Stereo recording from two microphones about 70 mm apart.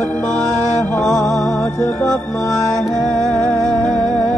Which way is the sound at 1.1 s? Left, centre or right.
Left.